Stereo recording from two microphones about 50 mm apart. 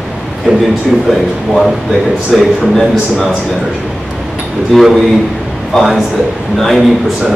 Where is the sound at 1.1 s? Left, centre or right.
Centre.